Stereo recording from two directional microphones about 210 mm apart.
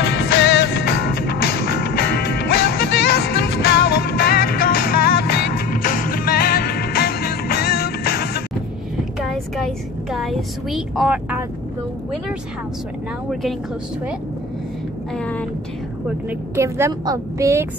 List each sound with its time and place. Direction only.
0.0 s music: 50° left (ahead or behind)
9.2 s a sound: centre (ahead or behind)
13.3 s speech: centre (ahead or behind)
15.1 s speech: 5° left (ahead or behind)
16.3 s a woman's voice: 10° right (ahead or behind)